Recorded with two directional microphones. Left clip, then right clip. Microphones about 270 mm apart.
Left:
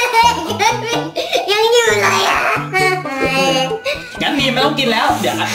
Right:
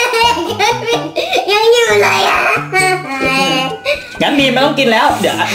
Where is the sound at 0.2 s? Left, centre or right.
Centre.